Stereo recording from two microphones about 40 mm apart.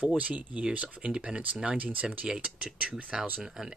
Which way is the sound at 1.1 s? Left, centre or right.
Right.